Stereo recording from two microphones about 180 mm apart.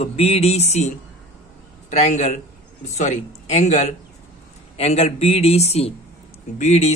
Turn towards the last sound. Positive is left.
turn(degrees=40)  # may be behind; listen again after turning